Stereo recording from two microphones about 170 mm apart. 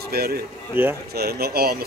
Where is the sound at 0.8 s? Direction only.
10° right (ahead or behind).